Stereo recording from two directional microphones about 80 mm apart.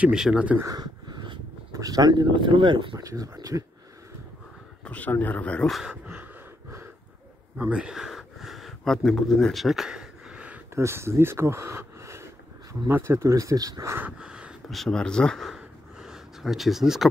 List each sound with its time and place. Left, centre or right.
0.0 s speech: centre
0.7 s a sound: right
1.7 s speech: right
3.0 s speech: right
4.8 s speech: centre
5.7 s speech: centre
7.7 s a sound: centre
10.7 s speech: right
14.0 s a sound: centre
14.7 s speech: centre